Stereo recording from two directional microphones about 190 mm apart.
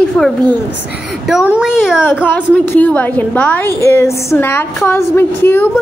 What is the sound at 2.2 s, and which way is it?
A woman's voice, 10° left (ahead or behind).